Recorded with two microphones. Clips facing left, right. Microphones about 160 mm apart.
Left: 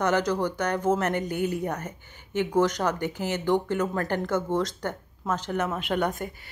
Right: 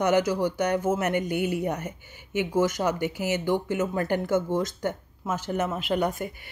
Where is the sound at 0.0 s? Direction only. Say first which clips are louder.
Right 2 dB; 10° right (ahead or behind).